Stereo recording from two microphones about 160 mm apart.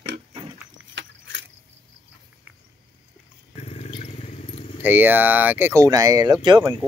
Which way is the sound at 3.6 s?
40° left (ahead or behind).